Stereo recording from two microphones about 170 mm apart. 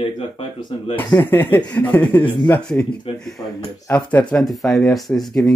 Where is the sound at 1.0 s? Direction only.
15° left (ahead or behind).